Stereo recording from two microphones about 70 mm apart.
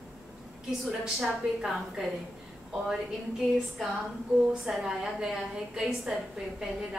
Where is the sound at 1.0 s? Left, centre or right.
Centre.